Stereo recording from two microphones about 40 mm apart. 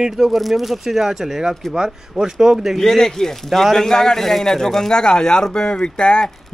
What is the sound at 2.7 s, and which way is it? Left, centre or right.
A man's voice, centre.